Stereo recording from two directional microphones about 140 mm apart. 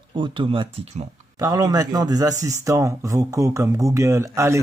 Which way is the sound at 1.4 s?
25° right (ahead or behind).